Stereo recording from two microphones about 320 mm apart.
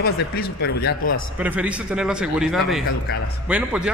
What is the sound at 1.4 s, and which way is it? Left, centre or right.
A man's voice, centre.